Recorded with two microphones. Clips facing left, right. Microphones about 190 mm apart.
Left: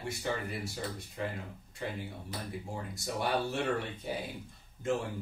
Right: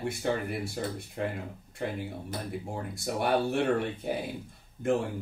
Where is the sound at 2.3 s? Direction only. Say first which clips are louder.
Right 4 dB; 55° right (ahead or behind).